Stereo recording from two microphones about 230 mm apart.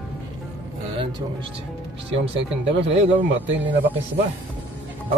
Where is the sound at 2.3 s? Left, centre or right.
Right.